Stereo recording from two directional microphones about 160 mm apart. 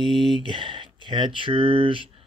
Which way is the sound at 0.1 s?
Centre (ahead or behind).